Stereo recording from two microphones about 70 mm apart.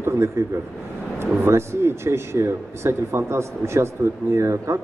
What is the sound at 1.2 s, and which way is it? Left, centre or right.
Speech, right.